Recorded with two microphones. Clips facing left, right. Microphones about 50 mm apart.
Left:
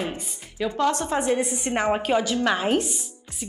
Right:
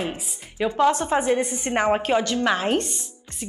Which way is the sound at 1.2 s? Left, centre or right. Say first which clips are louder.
Right 1 dB; centre.